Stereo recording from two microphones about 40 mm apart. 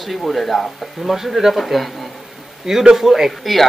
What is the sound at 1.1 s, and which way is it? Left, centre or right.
Speech, centre.